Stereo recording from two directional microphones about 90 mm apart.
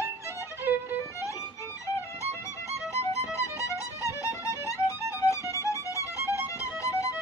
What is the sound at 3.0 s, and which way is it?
Music, 35° left (ahead or behind).